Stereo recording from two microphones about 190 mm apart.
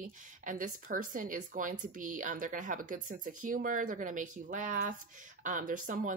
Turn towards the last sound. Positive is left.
turn(degrees=-45)  # may be behind; listen again after turning